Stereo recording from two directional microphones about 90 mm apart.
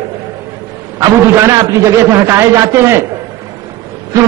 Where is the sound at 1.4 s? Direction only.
35° right (ahead or behind).